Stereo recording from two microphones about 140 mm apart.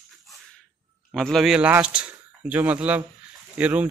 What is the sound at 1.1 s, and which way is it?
Speech, 5° left (ahead or behind).